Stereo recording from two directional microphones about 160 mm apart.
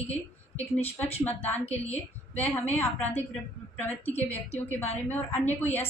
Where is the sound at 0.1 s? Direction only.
10° left (ahead or behind).